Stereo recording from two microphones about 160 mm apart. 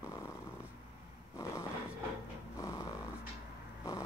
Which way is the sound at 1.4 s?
20° left (ahead or behind).